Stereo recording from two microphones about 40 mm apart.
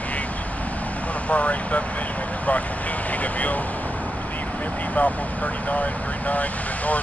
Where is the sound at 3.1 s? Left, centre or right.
Left.